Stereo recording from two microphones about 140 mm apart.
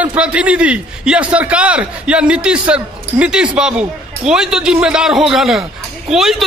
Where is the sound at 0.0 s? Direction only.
10° right (ahead or behind).